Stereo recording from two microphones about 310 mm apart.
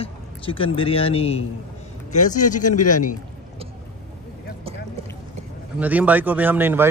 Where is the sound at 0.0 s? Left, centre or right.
Centre.